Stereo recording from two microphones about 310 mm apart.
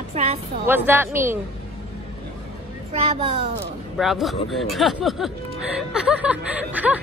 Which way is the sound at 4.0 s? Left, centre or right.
Centre.